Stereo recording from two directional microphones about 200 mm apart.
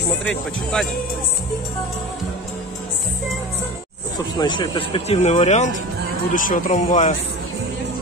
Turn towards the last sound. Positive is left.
turn(degrees=40)  # may be behind; listen again after turning